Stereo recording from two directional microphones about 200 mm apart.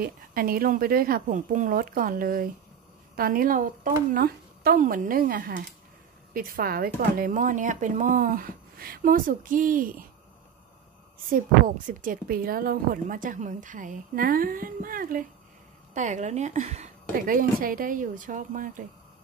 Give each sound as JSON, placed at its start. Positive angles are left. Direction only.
{"t": 0.0, "sound": "a woman's voice", "side_deg": -45}
{"t": 11.2, "sound": "a woman's voice", "side_deg": -45}